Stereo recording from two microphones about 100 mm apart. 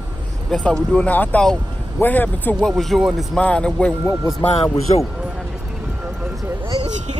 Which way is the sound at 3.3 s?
10° left (ahead or behind).